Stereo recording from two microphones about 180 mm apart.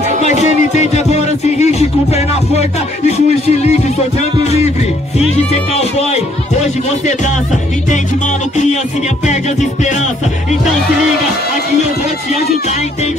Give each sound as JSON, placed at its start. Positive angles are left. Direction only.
{"t": 0.2, "sound": "speech", "side_deg": 40}
{"t": 9.2, "sound": "speech", "side_deg": 40}